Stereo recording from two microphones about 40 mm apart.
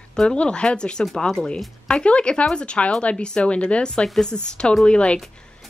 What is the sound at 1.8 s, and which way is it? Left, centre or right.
Speech, left.